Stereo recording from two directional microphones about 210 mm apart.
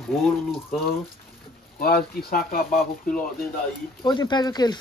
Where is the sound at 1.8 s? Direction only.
45° left (ahead or behind).